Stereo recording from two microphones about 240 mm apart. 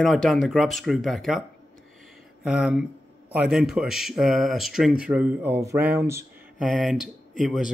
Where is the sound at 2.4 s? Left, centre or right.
Centre.